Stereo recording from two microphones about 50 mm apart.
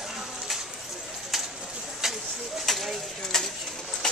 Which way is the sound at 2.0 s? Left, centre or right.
Centre.